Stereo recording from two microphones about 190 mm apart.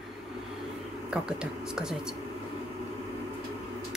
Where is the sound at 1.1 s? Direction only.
5° right (ahead or behind).